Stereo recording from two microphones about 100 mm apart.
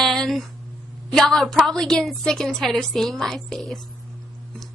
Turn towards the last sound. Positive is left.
turn(degrees=0)  # may be behind; listen again after turning